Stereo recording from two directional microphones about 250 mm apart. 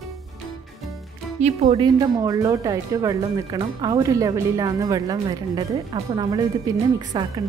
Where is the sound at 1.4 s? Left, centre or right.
Right.